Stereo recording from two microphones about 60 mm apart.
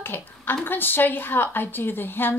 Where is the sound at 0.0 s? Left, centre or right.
Left.